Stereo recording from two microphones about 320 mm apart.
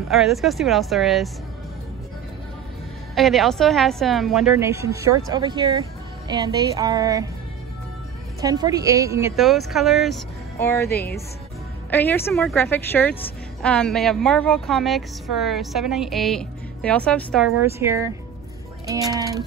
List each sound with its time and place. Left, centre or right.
0.1 s a woman's voice: centre
3.2 s a woman's voice: centre
8.4 s a woman's voice: centre
17.6 s speech: centre